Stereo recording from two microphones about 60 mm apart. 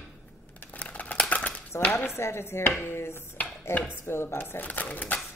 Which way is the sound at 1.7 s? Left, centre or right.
Left.